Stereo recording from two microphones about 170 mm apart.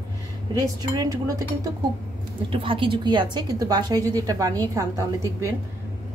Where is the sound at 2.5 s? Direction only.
30° right (ahead or behind).